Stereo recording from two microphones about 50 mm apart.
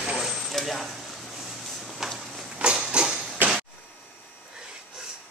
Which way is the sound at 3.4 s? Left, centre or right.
Right.